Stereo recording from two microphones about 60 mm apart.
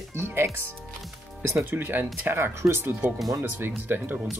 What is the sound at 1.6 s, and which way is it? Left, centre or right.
Speech, right.